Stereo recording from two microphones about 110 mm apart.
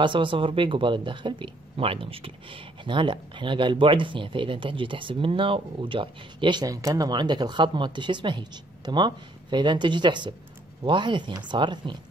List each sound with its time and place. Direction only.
0.0 s speech: 50° right (ahead or behind)